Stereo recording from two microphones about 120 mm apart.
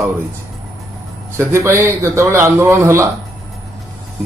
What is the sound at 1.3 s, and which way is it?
A man's voice, 25° right (ahead or behind).